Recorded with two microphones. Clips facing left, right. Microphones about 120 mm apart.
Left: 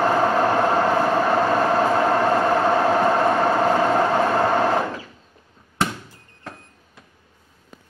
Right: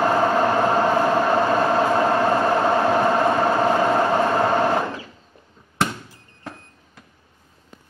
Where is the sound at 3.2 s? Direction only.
5° right (ahead or behind).